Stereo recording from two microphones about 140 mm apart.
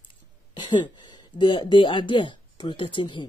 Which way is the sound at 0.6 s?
35° left (ahead or behind).